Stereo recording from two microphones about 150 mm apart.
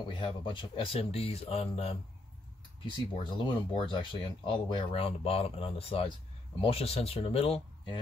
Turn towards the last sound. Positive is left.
turn(degrees=35)  # may be behind; listen again after turning